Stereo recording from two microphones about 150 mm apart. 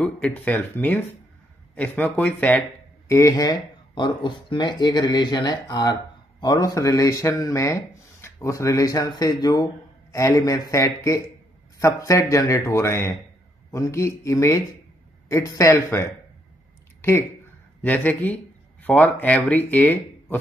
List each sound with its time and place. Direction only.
0.0 s speech: 10° left (ahead or behind)
17.8 s speech: 10° left (ahead or behind)